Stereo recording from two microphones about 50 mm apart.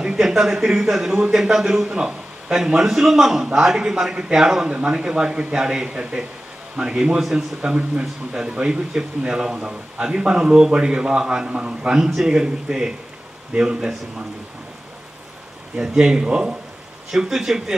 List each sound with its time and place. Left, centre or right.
0.0 s a man's voice: centre
12.0 s speech: centre
12.3 s a man's voice: centre
15.7 s a man's voice: centre